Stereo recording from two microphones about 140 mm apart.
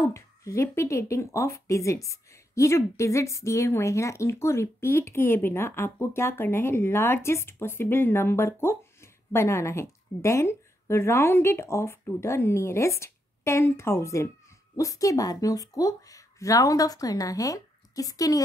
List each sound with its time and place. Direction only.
0.0 s a woman's voice: 20° left (ahead or behind)